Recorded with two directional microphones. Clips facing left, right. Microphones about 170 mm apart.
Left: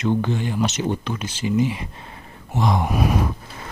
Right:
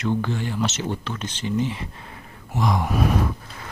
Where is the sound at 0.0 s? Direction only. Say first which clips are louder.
Left 3 dB; 20° left (ahead or behind).